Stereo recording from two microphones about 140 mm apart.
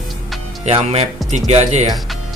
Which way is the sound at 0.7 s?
50° right (ahead or behind).